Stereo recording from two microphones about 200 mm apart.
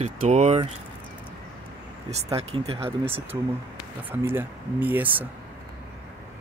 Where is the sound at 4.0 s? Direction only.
10° right (ahead or behind).